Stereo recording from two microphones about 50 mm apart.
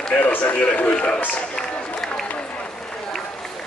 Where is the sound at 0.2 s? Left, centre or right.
Left.